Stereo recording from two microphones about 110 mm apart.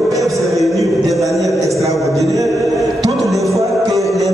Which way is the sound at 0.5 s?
Centre (ahead or behind).